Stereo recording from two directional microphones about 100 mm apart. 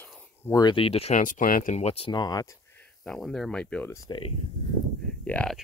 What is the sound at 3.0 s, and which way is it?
Speech, 5° left (ahead or behind).